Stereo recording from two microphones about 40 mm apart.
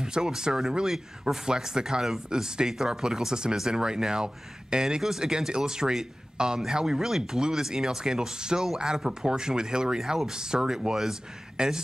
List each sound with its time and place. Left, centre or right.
0.0 s a man's voice: centre